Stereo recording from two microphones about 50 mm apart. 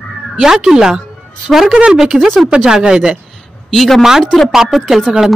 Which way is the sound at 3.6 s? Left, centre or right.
Centre.